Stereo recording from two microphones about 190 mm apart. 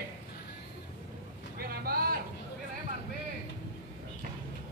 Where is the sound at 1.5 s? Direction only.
50° right (ahead or behind).